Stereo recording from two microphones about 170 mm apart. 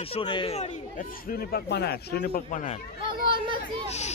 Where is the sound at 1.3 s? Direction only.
65° left (ahead or behind); by 2.8 s 45° left (ahead or behind).